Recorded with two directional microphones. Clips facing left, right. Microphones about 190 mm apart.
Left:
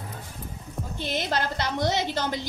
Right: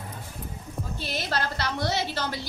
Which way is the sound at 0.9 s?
20° left (ahead or behind).